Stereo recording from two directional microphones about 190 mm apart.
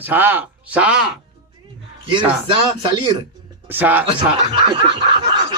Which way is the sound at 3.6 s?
10° right (ahead or behind).